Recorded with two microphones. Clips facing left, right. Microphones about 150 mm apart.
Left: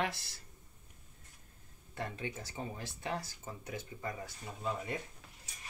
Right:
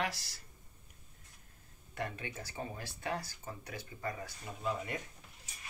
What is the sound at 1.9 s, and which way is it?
Speech, 20° left (ahead or behind).